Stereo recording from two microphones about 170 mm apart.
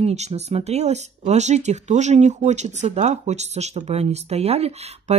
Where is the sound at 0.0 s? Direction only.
40° right (ahead or behind).